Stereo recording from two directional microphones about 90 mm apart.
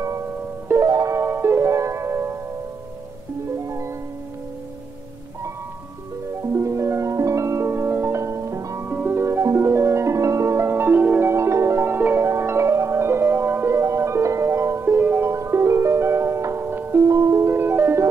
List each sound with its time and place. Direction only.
0.0 s music: 30° right (ahead or behind)
3.6 s music: 35° right (ahead or behind)
6.5 s music: 30° right (ahead or behind)
8.8 s music: 20° right (ahead or behind)
17.0 s music: 40° right (ahead or behind)